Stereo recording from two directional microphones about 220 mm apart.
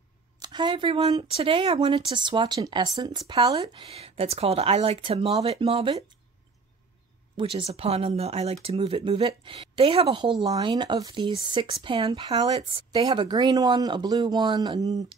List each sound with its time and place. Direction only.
0.4 s a woman's voice: 20° right (ahead or behind)
7.3 s a woman's voice: 25° right (ahead or behind)